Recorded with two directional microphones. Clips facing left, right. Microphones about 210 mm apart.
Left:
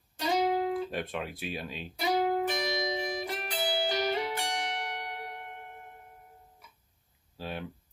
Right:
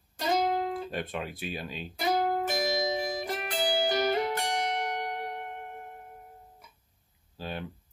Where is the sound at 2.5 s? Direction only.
45° right (ahead or behind).